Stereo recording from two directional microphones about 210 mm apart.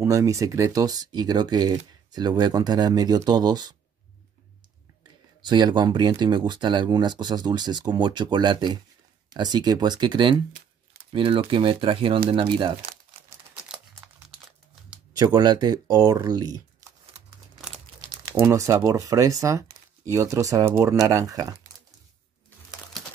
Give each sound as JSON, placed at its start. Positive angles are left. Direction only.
{"t": 0.0, "sound": "speech", "side_deg": -15}
{"t": 5.4, "sound": "speech", "side_deg": -20}
{"t": 15.1, "sound": "speech", "side_deg": -20}
{"t": 18.4, "sound": "speech", "side_deg": -15}